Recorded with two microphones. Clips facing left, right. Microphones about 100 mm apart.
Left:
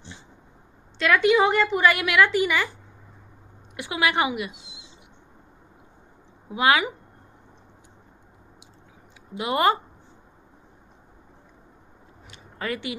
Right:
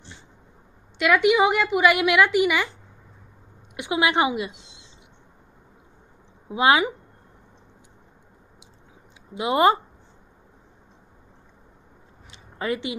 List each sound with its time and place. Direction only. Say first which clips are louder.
0.9 s a woman's voice: right 1 dB; 15° right (ahead or behind)
3.7 s a woman's voice: right 2 dB; 20° right (ahead or behind)
4.5 s a sound: even; 5° left (ahead or behind)
6.5 s a woman's voice: right 2 dB; 25° right (ahead or behind)
9.3 s a woman's voice: right 3 dB; 20° right (ahead or behind)
12.3 s a sound: right 3 dB; 20° right (ahead or behind)